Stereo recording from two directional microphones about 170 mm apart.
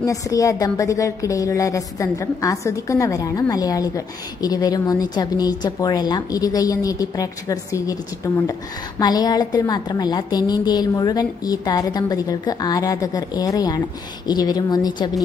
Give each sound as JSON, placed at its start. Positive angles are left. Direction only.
{"t": 0.0, "sound": "a woman's voice", "side_deg": 20}